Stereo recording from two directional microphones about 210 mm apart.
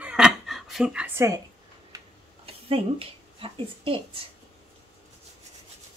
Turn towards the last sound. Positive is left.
turn(degrees=-25)  # may be behind; listen again after turning